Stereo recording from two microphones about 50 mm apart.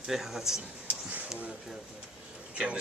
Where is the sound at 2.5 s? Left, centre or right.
Right.